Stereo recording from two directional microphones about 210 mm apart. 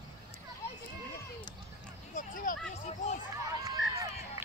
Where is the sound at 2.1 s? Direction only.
40° left (ahead or behind).